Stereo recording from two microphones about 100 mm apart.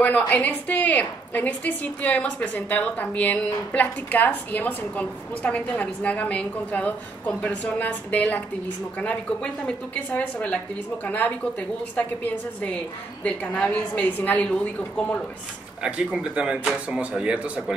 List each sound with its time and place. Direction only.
0.0 s a woman's voice: 15° left (ahead or behind)
15.8 s speech: 10° right (ahead or behind)